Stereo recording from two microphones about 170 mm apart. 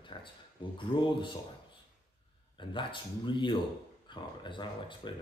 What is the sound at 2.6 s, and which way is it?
A man's voice, 30° left (ahead or behind).